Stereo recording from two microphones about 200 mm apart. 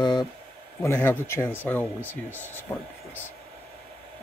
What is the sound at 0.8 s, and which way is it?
Speech, 10° left (ahead or behind).